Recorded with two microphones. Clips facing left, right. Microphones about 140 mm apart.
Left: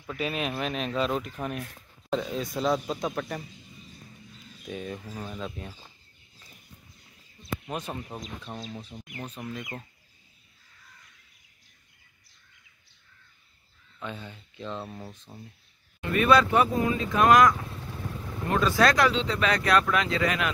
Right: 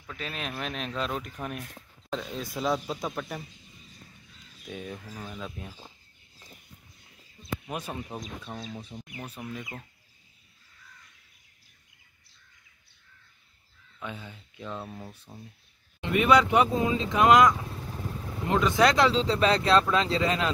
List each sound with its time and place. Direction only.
0.1 s a man's voice: 10° left (ahead or behind)
4.6 s a man's voice: centre (ahead or behind)
7.7 s a man's voice: 5° right (ahead or behind)
13.9 s a man's voice: 5° right (ahead or behind)
16.0 s speech: 15° right (ahead or behind)